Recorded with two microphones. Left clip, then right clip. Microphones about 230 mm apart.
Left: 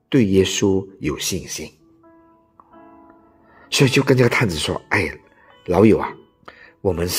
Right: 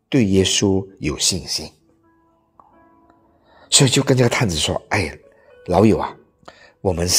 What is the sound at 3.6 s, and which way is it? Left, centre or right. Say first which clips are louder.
Speech: right 1 dB; centre.